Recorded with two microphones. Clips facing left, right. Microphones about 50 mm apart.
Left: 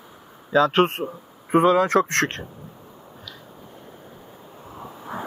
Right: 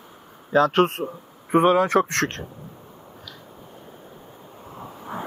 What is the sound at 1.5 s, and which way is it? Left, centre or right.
Speech, left.